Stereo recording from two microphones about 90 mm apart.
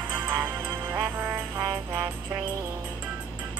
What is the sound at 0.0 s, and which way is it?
Music, 25° right (ahead or behind).